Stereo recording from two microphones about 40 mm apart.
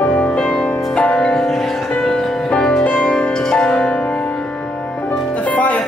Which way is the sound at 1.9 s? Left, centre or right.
Left.